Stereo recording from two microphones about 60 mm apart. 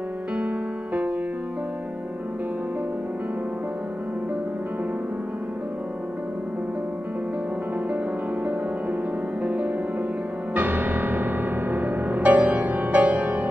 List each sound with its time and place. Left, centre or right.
9.4 s music: right